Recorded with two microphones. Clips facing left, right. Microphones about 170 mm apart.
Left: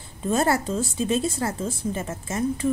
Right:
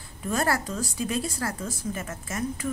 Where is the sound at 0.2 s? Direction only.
25° left (ahead or behind).